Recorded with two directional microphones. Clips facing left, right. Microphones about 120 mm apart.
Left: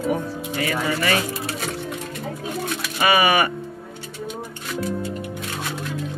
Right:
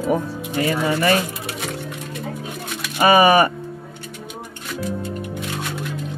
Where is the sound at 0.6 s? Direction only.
30° right (ahead or behind).